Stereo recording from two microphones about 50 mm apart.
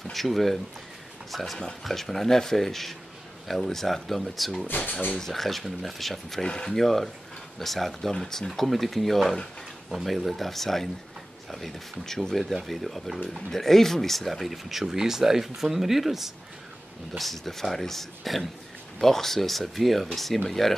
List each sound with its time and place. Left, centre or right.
0.0 s speech: centre
4.6 s speech: left
5.1 s speech: centre
6.4 s speech: centre
12.0 s speech: centre